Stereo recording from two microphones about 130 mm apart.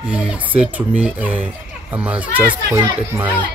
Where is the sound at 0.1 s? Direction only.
10° right (ahead or behind).